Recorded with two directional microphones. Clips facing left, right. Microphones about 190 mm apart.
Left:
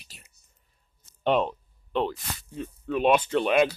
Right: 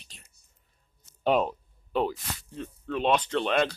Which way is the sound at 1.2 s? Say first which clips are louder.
Left 1 dB; 5° right (ahead or behind).